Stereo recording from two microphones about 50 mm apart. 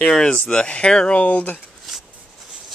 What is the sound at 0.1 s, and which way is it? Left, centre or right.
Speech, centre.